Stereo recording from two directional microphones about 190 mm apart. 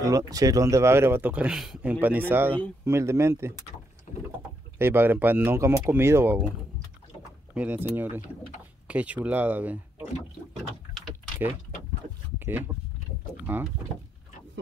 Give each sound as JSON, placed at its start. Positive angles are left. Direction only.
{"t": 0.0, "sound": "speech", "side_deg": -20}
{"t": 4.1, "sound": "rowboat", "side_deg": 40}
{"t": 4.7, "sound": "speech", "side_deg": -10}
{"t": 7.5, "sound": "speech", "side_deg": -10}
{"t": 12.4, "sound": "speech", "side_deg": -10}